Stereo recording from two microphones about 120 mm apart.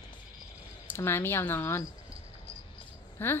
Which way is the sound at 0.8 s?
20° left (ahead or behind).